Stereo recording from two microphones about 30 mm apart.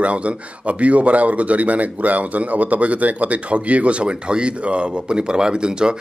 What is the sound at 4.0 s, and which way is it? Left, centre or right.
Speech, right.